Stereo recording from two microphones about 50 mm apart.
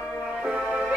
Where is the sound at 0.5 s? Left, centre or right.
Right.